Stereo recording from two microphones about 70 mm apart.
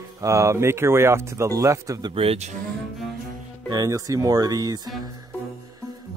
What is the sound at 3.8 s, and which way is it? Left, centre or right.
Speech, right.